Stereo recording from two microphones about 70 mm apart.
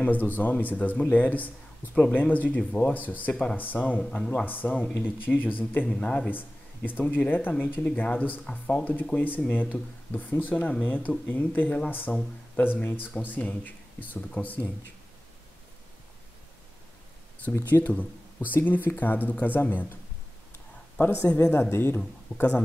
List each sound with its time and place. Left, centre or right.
0.0 s a man's voice: left
8.5 s speech: centre
9.0 s a man's voice: left
17.6 s a man's voice: left
21.0 s a woman's voice: left